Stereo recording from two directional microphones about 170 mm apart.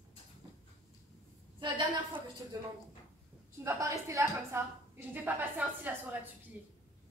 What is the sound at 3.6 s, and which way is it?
A woman's voice, 15° right (ahead or behind).